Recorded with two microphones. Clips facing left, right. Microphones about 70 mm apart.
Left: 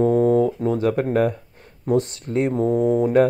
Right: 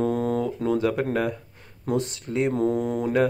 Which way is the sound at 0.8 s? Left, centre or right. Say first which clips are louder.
Left 5 dB; left.